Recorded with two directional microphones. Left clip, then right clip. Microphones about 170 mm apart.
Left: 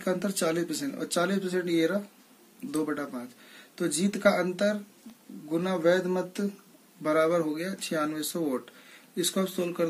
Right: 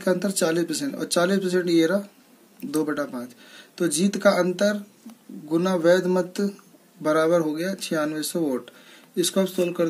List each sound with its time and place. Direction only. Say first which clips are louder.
0.0 s speech: right 6 dB; 20° right (ahead or behind)